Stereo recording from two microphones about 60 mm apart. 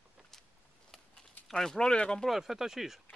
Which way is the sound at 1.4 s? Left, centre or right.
Centre.